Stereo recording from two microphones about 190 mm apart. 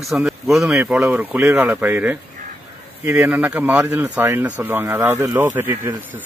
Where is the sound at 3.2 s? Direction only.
10° right (ahead or behind).